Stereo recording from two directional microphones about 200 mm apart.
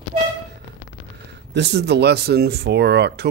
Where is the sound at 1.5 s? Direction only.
60° right (ahead or behind).